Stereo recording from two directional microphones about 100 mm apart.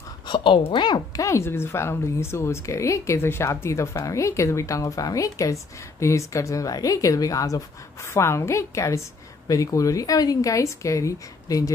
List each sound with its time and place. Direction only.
0.3 s a woman's voice: 60° left (ahead or behind); by 11.7 s 35° left (ahead or behind)